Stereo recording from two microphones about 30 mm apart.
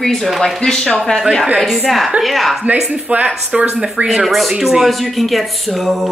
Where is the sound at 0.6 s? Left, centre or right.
Left.